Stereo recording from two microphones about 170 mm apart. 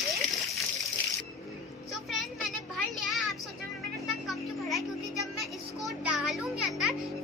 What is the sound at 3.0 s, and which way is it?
Music, centre (ahead or behind).